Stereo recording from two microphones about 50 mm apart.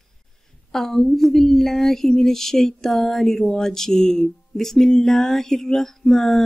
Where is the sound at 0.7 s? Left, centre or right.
Centre.